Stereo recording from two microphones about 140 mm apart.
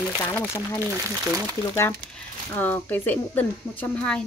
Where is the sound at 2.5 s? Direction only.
15° left (ahead or behind).